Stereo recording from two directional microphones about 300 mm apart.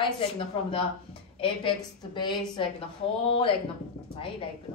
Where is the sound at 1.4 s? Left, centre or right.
Centre.